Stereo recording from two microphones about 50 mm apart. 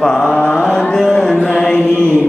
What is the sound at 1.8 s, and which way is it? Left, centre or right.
Mantra, left.